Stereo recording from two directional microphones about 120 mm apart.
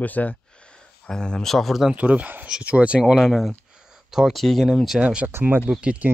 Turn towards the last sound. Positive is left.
turn(degrees=-10)  # may be behind; listen again after turning